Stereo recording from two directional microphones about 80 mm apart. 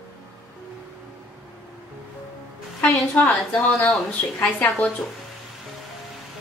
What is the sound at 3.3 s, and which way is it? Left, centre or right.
Speech, centre.